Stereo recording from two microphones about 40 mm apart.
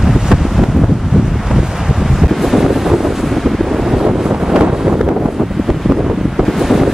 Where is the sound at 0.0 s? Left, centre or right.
Centre.